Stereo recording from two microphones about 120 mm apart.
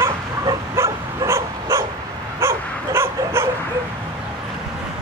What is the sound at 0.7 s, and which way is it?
Bow-wow, 25° right (ahead or behind).